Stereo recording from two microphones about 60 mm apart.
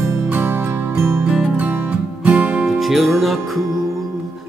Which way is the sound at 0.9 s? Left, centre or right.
Right.